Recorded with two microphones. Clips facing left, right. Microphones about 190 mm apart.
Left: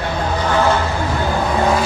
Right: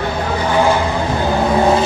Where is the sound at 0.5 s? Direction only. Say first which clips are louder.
Right 2 dB; 10° right (ahead or behind).